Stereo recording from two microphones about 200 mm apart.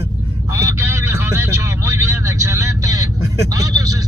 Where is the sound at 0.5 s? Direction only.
15° right (ahead or behind).